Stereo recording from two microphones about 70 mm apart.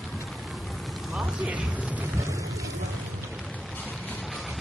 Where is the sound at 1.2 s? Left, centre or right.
Centre.